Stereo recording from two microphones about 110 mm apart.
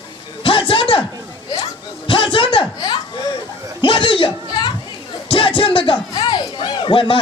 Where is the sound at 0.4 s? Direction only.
55° left (ahead or behind).